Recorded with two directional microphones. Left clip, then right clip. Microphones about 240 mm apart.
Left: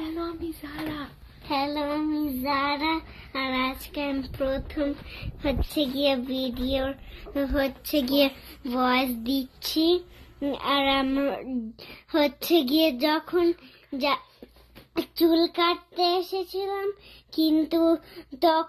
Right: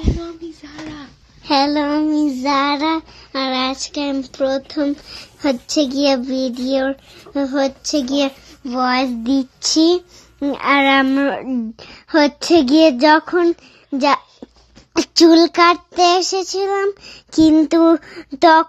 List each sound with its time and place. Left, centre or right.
0.2 s child singing: centre
1.5 s child singing: right; by 6.5 s centre
6.7 s a child's voice: right
8.1 s a child's voice: centre
9.8 s child singing: right
15.0 s child singing: right